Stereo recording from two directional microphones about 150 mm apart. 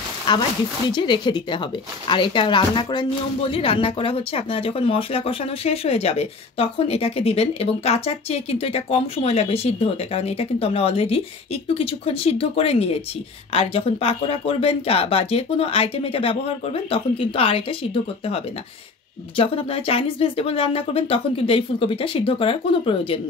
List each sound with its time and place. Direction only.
0.3 s speech: 30° left (ahead or behind)
19.3 s speech: 40° left (ahead or behind)